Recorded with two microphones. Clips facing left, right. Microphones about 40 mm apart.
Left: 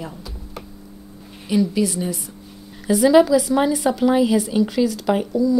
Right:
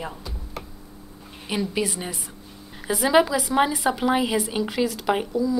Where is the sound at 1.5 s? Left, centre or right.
Right.